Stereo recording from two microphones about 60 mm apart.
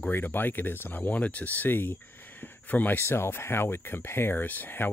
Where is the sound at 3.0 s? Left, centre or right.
Left.